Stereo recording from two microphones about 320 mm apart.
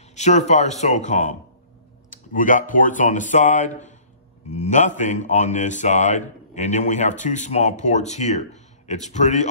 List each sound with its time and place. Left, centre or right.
0.1 s speech: left